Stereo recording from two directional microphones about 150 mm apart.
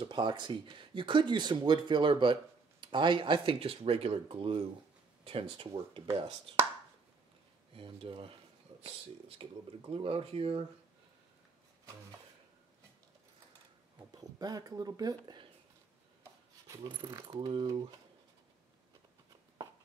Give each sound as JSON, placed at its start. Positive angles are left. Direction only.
{"t": 0.0, "sound": "speech", "side_deg": -30}
{"t": 7.7, "sound": "speech", "side_deg": -35}
{"t": 9.4, "sound": "speech", "side_deg": -35}
{"t": 13.9, "sound": "speech", "side_deg": -25}
{"t": 16.6, "sound": "a sound", "side_deg": -20}
{"t": 17.1, "sound": "speech", "side_deg": -25}